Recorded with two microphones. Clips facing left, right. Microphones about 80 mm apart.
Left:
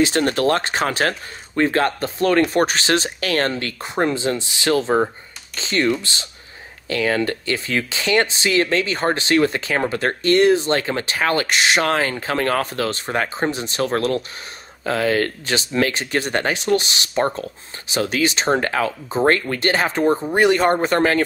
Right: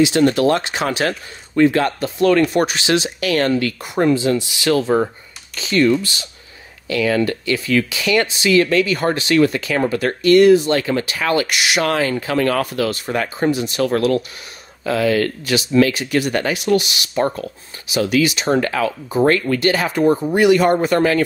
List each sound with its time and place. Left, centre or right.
0.0 s speech: left
4.8 s speech: centre
5.6 s speech: left